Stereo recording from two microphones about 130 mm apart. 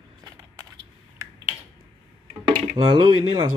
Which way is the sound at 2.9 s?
40° right (ahead or behind).